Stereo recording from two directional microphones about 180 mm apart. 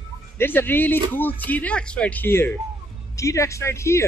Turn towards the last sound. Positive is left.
turn(degrees=15)  # may be behind; listen again after turning